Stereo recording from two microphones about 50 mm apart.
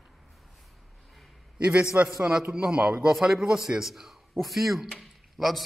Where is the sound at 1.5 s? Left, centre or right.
Right.